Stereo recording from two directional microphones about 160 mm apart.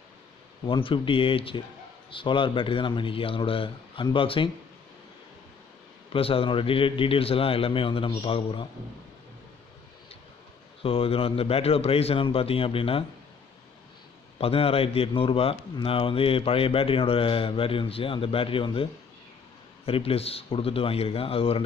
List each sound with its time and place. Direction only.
0.7 s a man's voice: 30° left (ahead or behind)
6.1 s a man's voice: 35° left (ahead or behind)
10.8 s a man's voice: 35° left (ahead or behind)
14.4 s a man's voice: 35° left (ahead or behind)